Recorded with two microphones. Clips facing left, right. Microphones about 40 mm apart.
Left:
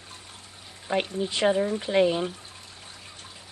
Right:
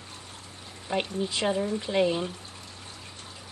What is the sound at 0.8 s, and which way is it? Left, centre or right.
Speech, centre.